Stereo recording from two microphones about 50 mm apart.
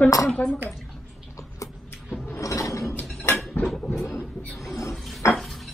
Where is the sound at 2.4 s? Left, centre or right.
Left.